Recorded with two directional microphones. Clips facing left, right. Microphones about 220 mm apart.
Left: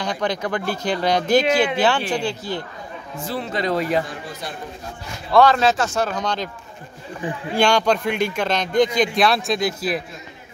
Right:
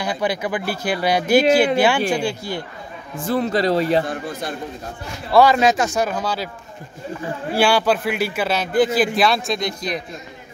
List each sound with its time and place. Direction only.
0.0 s speech: 10° right (ahead or behind)
3.3 s speech: 40° right (ahead or behind)
4.1 s a man's voice: 50° right (ahead or behind)
5.3 s speech: 10° right (ahead or behind)
7.5 s a man's voice: 5° right (ahead or behind)